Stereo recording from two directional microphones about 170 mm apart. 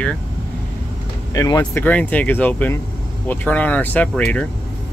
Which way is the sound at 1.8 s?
10° left (ahead or behind).